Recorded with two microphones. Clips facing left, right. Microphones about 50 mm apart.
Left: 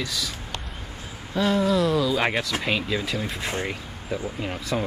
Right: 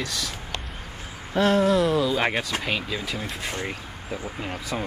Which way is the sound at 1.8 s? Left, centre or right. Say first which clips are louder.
Even; centre.